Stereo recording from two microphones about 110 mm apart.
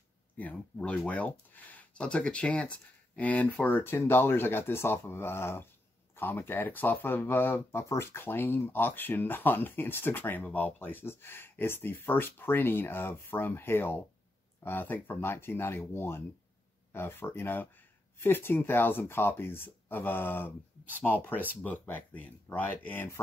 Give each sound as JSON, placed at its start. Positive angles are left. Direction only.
{"t": 0.4, "sound": "speech", "side_deg": 15}